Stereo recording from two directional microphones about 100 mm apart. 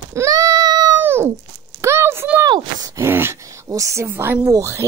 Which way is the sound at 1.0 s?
25° right (ahead or behind).